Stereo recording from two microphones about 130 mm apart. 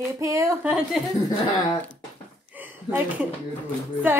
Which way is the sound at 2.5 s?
15° right (ahead or behind).